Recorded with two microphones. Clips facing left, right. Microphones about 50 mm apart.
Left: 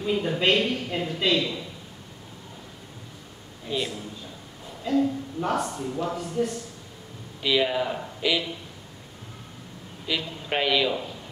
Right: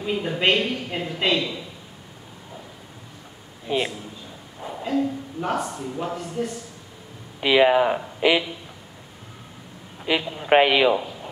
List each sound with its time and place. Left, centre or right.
0.0 s a woman's voice: centre
3.6 s speech: right
4.8 s a sound: centre
6.1 s a man's voice: centre
7.3 s speech: right
10.0 s speech: right